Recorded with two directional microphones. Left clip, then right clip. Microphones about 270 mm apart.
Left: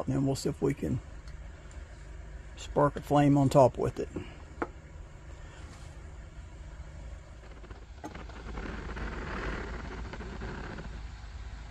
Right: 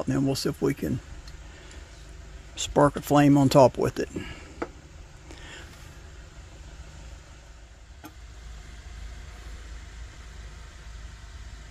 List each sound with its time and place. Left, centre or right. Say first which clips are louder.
0.0 s speech: right 5 dB; right
2.5 s speech: right 6 dB; right